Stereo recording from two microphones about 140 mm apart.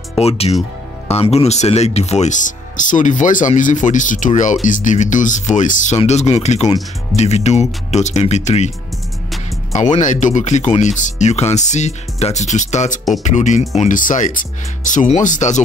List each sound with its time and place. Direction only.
0.1 s speech: 45° left (ahead or behind)
9.8 s speech: 60° left (ahead or behind)